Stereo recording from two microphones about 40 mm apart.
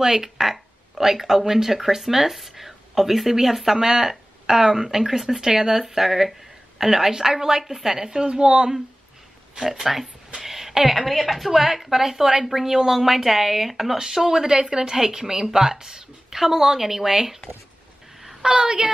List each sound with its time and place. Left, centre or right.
0.0 s a woman's voice: centre
9.6 s a woman's voice: centre
18.4 s a woman's voice: right